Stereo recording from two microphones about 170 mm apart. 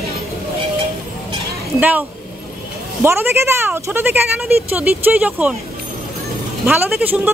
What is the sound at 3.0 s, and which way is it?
Speech, 15° right (ahead or behind).